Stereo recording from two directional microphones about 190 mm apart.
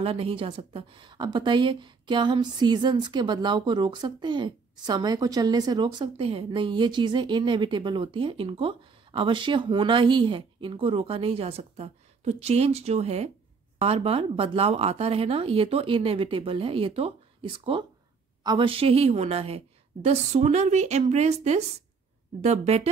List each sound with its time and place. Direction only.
0.0 s a woman's voice: 30° right (ahead or behind)